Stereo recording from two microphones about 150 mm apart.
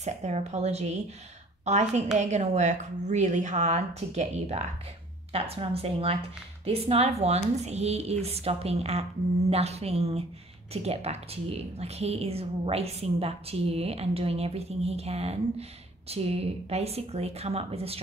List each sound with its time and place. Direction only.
0.0 s a woman's voice: 50° right (ahead or behind)